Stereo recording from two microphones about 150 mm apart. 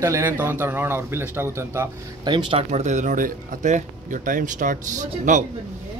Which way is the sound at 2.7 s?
55° right (ahead or behind).